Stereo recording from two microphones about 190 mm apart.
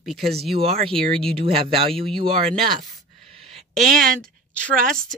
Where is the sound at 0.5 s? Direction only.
30° right (ahead or behind).